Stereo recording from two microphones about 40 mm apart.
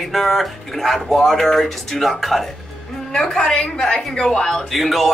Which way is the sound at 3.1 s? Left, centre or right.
Centre.